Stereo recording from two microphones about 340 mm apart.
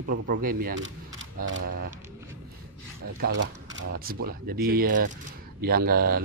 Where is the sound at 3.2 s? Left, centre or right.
Right.